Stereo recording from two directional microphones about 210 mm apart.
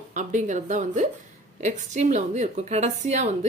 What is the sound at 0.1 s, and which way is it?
A woman's voice, 35° right (ahead or behind).